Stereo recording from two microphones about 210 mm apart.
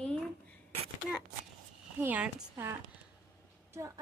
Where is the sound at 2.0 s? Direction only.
5° right (ahead or behind).